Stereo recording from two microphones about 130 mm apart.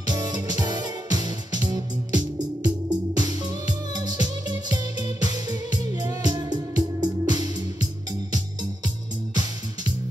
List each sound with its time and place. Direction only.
0.0 s music: 30° right (ahead or behind)